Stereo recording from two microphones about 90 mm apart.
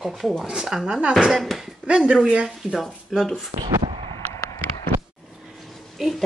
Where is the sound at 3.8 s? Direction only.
90° right.